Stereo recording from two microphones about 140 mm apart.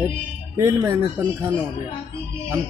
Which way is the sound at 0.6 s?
20° right (ahead or behind).